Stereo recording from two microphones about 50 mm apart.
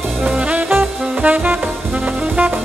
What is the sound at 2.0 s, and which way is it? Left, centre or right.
Brass instrument, right.